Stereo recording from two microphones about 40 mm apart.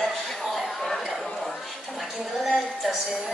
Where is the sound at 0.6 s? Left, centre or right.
Centre.